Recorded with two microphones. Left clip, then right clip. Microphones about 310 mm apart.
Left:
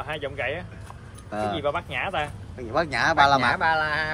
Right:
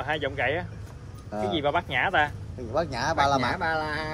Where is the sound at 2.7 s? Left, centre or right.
Left.